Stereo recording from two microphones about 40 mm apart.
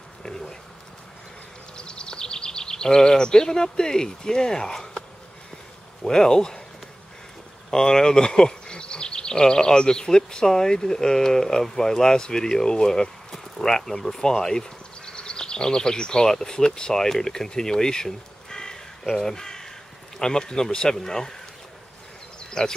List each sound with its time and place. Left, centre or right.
1.8 s a sound: left
6.0 s speech: centre
7.7 s speech: centre
19.2 s crow: centre
20.2 s speech: centre
22.5 s speech: centre